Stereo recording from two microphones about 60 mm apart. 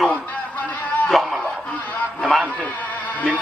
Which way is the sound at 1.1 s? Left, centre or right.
Centre.